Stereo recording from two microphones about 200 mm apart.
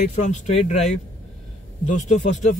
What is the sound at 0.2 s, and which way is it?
Speech, 35° left (ahead or behind).